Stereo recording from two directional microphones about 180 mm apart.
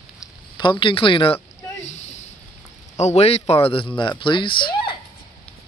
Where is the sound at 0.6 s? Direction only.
25° left (ahead or behind).